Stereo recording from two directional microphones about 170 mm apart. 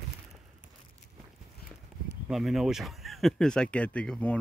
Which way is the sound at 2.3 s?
Centre (ahead or behind).